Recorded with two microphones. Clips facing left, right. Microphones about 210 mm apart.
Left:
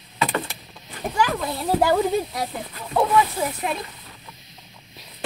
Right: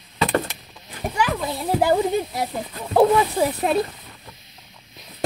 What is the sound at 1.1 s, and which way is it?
Speech, 5° right (ahead or behind).